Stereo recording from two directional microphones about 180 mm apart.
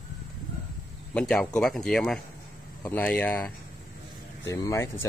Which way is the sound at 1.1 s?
5° left (ahead or behind).